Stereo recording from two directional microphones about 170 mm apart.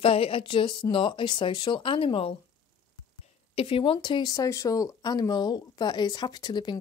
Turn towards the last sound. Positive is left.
turn(degrees=25)  # may be behind; listen again after turning